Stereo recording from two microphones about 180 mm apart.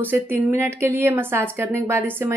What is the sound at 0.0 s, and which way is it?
A woman's voice, 10° right (ahead or behind).